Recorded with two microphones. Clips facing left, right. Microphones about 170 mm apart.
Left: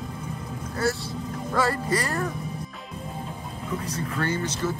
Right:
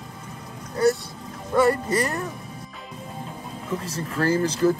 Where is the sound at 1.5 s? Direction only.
20° right (ahead or behind).